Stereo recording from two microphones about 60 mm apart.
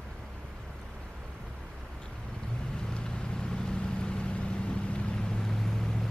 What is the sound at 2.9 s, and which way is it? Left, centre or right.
Vehicle, centre.